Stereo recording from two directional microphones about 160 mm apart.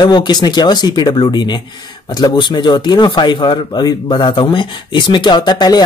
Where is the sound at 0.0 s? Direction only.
25° left (ahead or behind).